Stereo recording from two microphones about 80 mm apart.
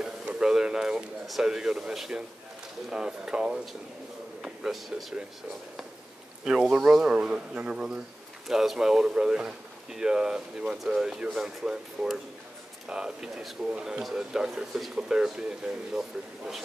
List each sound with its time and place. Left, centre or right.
0.0 s speech: centre
6.4 s speech: centre